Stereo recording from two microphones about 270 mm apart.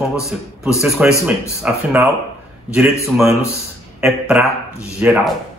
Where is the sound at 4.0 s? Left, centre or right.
Centre.